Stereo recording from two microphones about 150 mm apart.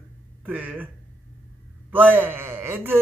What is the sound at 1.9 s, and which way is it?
Speech, 10° right (ahead or behind).